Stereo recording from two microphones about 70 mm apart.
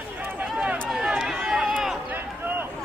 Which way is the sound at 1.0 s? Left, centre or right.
Centre.